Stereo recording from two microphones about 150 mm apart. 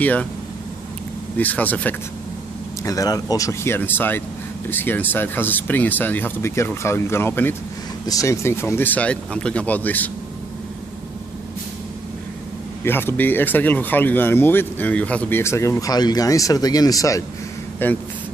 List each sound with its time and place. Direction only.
0.0 s speech: 10° left (ahead or behind)
1.4 s speech: 10° left (ahead or behind)
2.8 s speech: 25° left (ahead or behind)
12.8 s speech: 15° left (ahead or behind)